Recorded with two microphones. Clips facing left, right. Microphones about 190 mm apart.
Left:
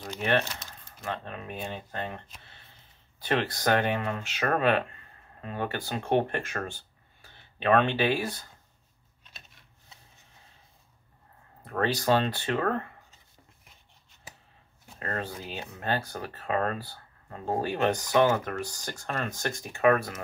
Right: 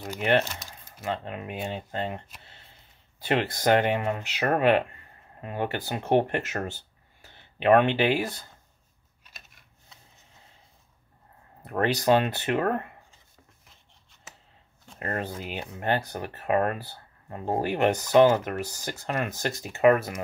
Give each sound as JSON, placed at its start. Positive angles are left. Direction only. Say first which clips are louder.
{"t": 0.0, "sound": "speech", "louder": "right 3 dB", "side_deg": -10}
{"t": 3.3, "sound": "speech", "louder": "right 3 dB", "side_deg": -15}
{"t": 11.6, "sound": "speech", "louder": "right 3 dB", "side_deg": -15}
{"t": 15.0, "sound": "speech", "louder": "right 3 dB", "side_deg": -15}